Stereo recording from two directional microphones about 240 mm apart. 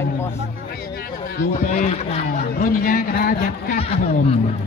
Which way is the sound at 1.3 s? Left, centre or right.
Left.